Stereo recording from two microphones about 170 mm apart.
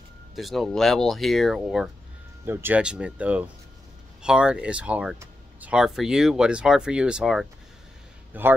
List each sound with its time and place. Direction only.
0.4 s speech: centre (ahead or behind)
2.4 s a man's voice: 15° right (ahead or behind)